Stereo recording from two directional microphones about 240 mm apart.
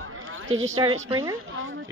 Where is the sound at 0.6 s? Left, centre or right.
Centre.